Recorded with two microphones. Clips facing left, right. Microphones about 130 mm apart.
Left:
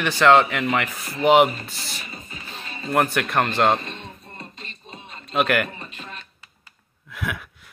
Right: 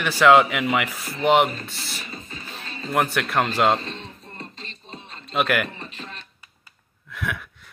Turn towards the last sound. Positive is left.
turn(degrees=5)  # may be behind; listen again after turning